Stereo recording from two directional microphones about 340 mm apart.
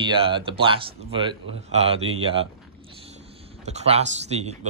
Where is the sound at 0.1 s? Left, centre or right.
Centre.